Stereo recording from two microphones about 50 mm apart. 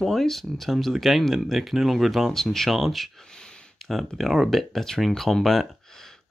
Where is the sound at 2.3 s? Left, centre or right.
Centre.